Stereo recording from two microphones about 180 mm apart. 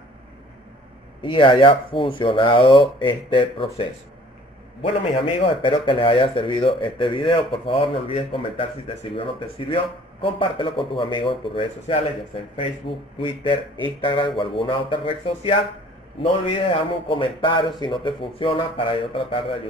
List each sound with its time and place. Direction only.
1.2 s a man's voice: 30° left (ahead or behind)
4.8 s a man's voice: 30° left (ahead or behind)